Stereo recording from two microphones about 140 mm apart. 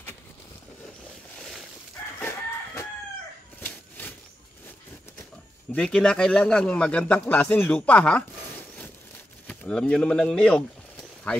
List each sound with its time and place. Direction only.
2.1 s chicken: 15° left (ahead or behind)
3.6 s a sound: 10° left (ahead or behind)
5.7 s speech: 5° left (ahead or behind)